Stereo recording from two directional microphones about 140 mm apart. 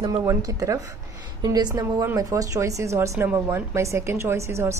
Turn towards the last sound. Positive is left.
turn(degrees=-20)  # may be behind; listen again after turning